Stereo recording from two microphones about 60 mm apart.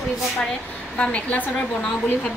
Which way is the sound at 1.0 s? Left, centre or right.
Left.